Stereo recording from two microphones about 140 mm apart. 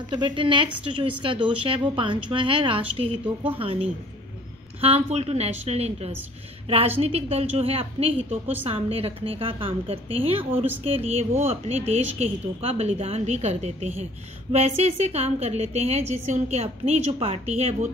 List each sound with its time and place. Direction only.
0.1 s a woman's voice: 35° right (ahead or behind); by 17.8 s 50° right (ahead or behind)